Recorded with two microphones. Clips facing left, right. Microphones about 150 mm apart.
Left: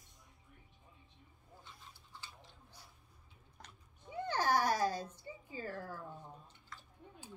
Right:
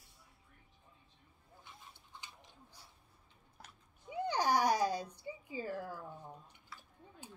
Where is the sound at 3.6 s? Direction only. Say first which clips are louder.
Even; 5° right (ahead or behind).